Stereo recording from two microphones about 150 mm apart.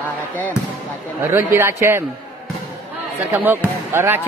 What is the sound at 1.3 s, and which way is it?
Speech, 15° right (ahead or behind).